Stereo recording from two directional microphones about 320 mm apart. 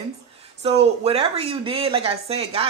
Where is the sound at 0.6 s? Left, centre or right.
Centre.